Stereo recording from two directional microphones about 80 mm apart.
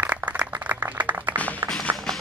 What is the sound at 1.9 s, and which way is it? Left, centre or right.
Music, right.